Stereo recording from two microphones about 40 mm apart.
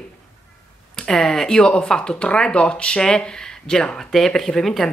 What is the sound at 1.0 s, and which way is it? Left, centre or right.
Speech, centre.